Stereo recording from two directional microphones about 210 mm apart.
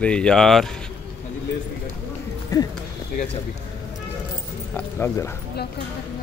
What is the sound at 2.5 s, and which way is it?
Speech, 15° left (ahead or behind).